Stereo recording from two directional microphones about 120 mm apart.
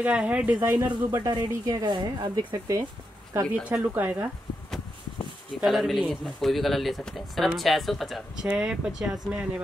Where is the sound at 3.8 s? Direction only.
15° right (ahead or behind).